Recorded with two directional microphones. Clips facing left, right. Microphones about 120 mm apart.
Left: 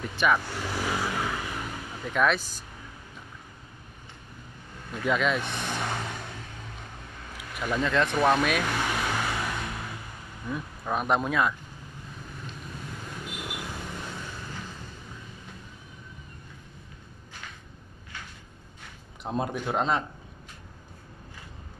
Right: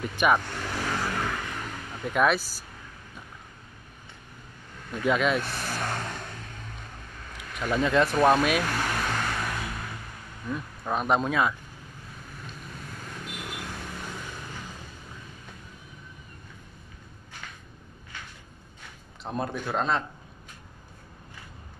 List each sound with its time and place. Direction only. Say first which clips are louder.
0.1 s speech: right 1 dB; 15° right (ahead or behind)
0.4 s vehicle: left 1 dB; 10° left (ahead or behind)
2.1 s speech: right 1 dB; 5° right (ahead or behind)
5.0 s speech: right 2 dB; 5° right (ahead or behind)
7.5 s speech: right 2 dB; 5° left (ahead or behind)
7.8 s vehicle: right 3 dB; 5° right (ahead or behind)
10.4 s speech: right 1 dB; 5° left (ahead or behind)
13.0 s vehicle: even; 10° left (ahead or behind)
19.2 s speech: left 1 dB; 15° left (ahead or behind)